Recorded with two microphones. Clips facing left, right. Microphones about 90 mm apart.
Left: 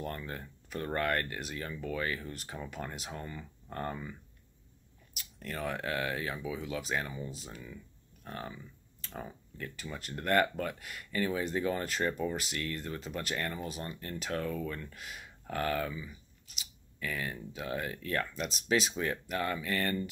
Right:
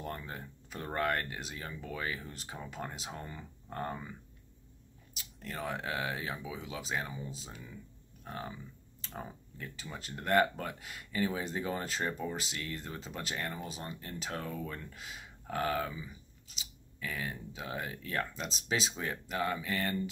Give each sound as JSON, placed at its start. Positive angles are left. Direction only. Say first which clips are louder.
{"t": 0.0, "sound": "speech", "louder": "left 2 dB", "side_deg": -20}
{"t": 5.1, "sound": "speech", "louder": "left 2 dB", "side_deg": -25}
{"t": 10.1, "sound": "speech", "louder": "even", "side_deg": -20}
{"t": 17.0, "sound": "speech", "louder": "left 2 dB", "side_deg": -15}
{"t": 18.3, "sound": "speech", "louder": "left 5 dB", "side_deg": -30}
{"t": 19.3, "sound": "speech", "louder": "right 2 dB", "side_deg": -20}